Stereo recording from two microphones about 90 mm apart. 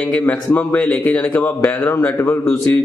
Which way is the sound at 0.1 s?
15° left (ahead or behind).